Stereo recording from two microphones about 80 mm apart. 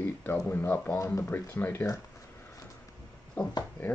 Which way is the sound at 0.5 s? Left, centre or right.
Left.